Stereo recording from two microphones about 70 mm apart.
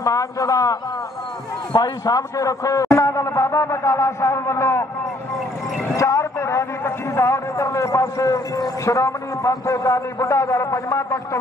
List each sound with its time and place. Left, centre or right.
0.0 s a man's voice: left
1.7 s a man's voice: left
5.9 s a man's voice: left